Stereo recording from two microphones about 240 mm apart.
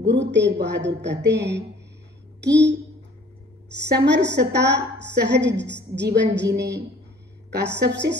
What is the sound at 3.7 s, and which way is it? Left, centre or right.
A woman's voice, right.